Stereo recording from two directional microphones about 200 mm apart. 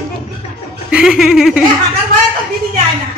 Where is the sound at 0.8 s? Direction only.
5° right (ahead or behind).